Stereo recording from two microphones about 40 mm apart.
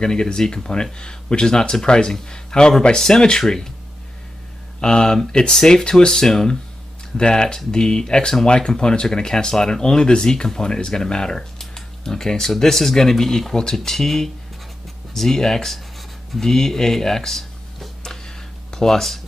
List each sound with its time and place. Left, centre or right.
0.0 s speech: centre
4.7 s speech: centre
16.3 s a sound: centre